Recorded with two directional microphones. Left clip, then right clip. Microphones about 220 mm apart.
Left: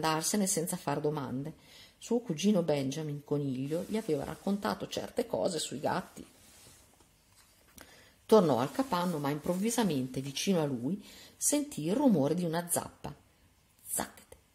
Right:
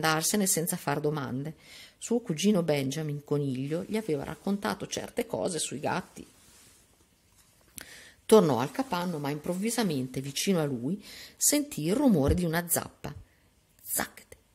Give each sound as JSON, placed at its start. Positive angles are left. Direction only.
{"t": 0.0, "sound": "speech", "side_deg": -25}
{"t": 7.7, "sound": "speech", "side_deg": -35}
{"t": 13.9, "sound": "dog", "side_deg": -25}